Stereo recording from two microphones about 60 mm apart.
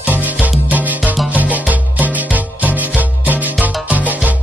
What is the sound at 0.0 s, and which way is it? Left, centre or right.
Music, right.